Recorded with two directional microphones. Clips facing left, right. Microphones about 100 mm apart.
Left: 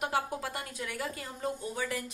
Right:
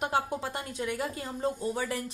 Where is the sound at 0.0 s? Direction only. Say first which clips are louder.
Right 2 dB; 25° right (ahead or behind).